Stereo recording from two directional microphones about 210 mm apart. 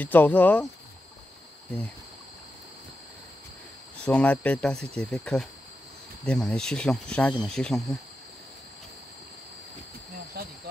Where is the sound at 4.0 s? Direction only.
5° left (ahead or behind).